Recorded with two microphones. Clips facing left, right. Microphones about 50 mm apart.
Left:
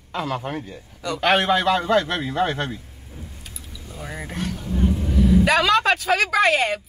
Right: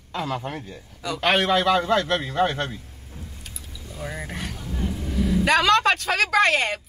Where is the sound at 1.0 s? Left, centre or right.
Centre.